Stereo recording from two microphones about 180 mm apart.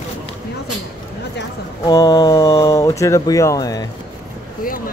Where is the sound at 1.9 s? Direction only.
25° left (ahead or behind).